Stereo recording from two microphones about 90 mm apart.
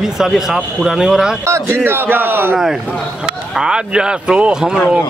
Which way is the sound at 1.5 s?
25° right (ahead or behind).